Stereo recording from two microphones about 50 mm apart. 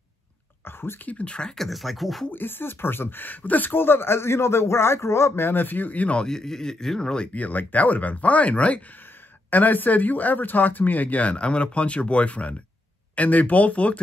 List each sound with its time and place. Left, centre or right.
0.7 s a sound: left
1.0 s speech: left
1.6 s speech: centre
2.3 s speech: left
6.2 s speech: centre
7.3 s speech: left